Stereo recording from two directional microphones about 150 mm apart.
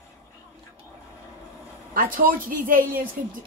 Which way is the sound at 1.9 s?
65° right (ahead or behind).